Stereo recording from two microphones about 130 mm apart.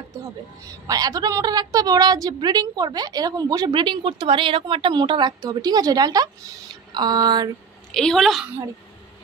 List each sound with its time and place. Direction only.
0.7 s a woman's voice: 30° right (ahead or behind)
7.9 s a woman's voice: 5° left (ahead or behind)